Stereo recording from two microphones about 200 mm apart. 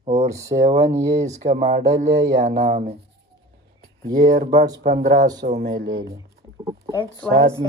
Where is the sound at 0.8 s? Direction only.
15° right (ahead or behind).